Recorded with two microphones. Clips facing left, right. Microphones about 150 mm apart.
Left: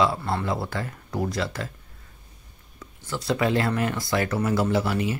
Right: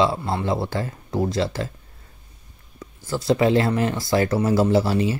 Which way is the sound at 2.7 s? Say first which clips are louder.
Right 5 dB; 35° right (ahead or behind).